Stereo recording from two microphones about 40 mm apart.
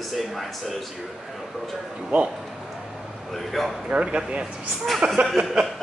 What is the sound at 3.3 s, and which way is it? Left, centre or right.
Speech, centre.